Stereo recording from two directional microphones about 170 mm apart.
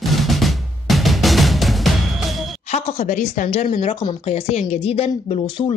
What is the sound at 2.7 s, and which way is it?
Speech, 40° left (ahead or behind).